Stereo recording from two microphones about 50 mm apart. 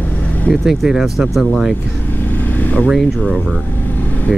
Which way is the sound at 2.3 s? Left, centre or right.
Left.